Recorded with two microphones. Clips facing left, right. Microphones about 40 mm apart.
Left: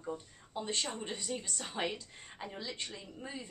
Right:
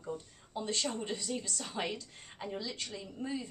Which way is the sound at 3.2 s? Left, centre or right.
Centre.